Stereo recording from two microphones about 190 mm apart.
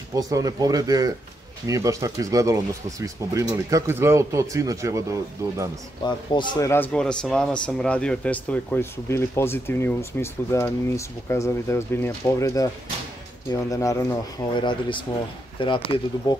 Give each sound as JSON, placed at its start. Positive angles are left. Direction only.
{"t": 0.1, "sound": "speech", "side_deg": -20}
{"t": 6.0, "sound": "speech", "side_deg": 20}